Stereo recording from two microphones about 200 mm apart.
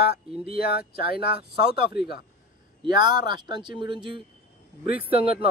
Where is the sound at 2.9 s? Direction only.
20° right (ahead or behind).